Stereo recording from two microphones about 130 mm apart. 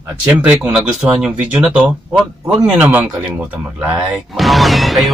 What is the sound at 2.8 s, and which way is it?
Speech, 15° right (ahead or behind).